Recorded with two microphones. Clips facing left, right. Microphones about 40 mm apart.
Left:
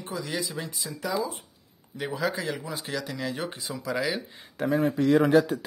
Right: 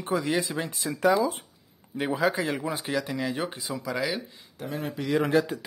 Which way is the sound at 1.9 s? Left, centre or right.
Right.